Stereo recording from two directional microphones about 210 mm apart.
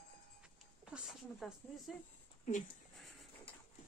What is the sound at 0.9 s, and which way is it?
Speech, centre (ahead or behind).